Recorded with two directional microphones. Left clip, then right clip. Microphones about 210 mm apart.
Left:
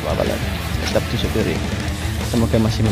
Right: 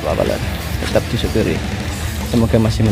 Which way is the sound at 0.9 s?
5° right (ahead or behind).